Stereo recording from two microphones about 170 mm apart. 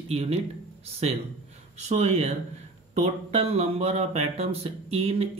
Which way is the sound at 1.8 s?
40° right (ahead or behind).